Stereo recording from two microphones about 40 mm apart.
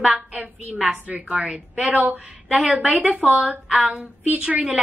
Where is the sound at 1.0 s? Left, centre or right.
Right.